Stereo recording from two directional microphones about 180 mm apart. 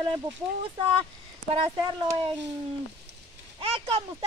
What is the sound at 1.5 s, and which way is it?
Speech, 25° right (ahead or behind).